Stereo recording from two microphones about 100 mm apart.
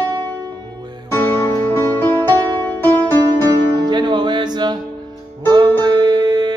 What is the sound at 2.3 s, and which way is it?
Music, 45° right (ahead or behind).